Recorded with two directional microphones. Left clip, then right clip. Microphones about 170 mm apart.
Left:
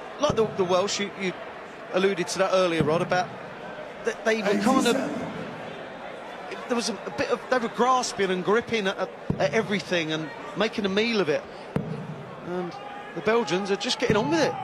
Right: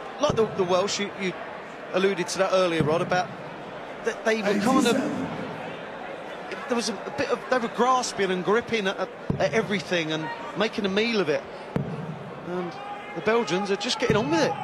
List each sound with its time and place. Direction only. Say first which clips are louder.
0.2 s speech: even; 60° right (ahead or behind)
6.7 s speech: even; 60° right (ahead or behind)
13.2 s speech: even; 60° right (ahead or behind)